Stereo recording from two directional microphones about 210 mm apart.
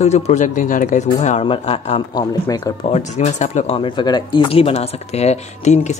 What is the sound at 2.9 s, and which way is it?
Speech, 30° left (ahead or behind).